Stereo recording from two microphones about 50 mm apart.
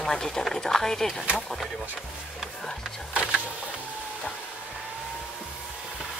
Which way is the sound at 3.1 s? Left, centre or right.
Centre.